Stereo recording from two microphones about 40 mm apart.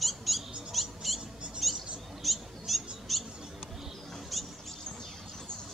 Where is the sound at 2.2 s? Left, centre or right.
Centre.